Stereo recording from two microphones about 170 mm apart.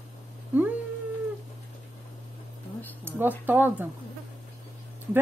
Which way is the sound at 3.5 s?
10° right (ahead or behind).